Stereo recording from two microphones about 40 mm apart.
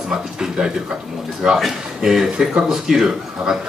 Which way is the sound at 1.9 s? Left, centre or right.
Centre.